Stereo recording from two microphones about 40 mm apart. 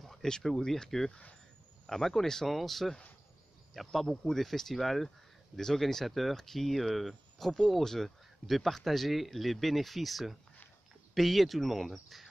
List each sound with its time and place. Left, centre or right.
0.0 s speech: centre